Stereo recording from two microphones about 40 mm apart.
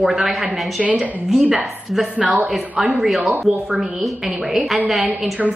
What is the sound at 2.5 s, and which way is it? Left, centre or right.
Speech, centre.